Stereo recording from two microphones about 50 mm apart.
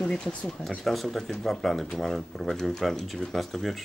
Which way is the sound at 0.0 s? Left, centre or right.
Centre.